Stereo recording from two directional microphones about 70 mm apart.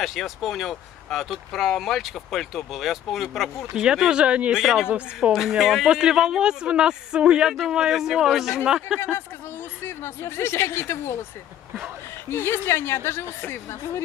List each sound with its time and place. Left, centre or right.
0.0 s speech: centre
4.6 s speech: centre
4.8 s speech: centre
5.3 s speech: centre
9.8 s a woman's voice: left
12.3 s a woman's voice: left